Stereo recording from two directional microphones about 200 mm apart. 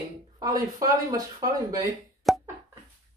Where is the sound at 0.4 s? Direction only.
20° right (ahead or behind).